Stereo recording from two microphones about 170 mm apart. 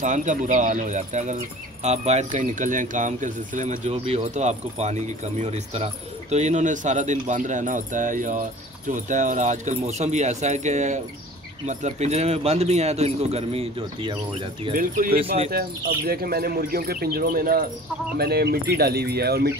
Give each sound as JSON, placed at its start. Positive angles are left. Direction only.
{"t": 0.0, "sound": "speech", "side_deg": -45}
{"t": 14.8, "sound": "speech", "side_deg": -55}